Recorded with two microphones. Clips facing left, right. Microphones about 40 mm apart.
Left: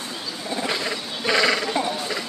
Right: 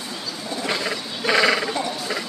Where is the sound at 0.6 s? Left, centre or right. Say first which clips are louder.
Right 3 dB; centre.